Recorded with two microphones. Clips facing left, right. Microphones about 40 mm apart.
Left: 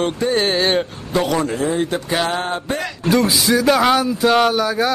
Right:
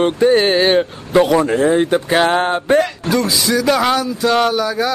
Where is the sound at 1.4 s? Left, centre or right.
Right.